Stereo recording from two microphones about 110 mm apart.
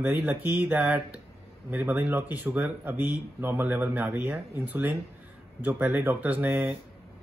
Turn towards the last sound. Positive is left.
turn(degrees=-15)  # may be behind; listen again after turning